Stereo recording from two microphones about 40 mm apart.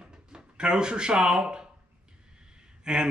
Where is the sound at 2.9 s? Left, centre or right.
Right.